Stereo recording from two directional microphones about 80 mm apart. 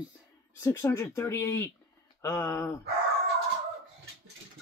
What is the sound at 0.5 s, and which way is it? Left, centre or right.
Speech, left.